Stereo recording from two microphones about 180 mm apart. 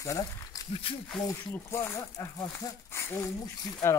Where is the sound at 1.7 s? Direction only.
15° left (ahead or behind).